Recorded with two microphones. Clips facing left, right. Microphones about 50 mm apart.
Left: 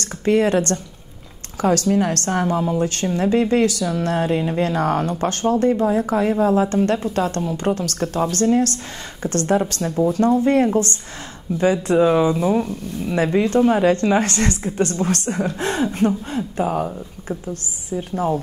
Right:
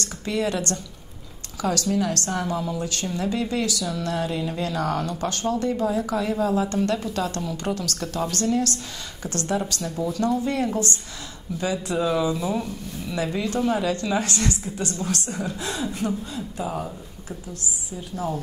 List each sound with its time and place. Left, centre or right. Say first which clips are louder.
0.0 s a woman's voice: left 8 dB; left